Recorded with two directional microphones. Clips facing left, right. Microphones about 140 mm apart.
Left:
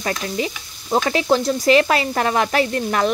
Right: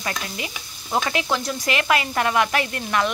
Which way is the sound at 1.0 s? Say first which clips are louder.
Left 7 dB; 35° left (ahead or behind).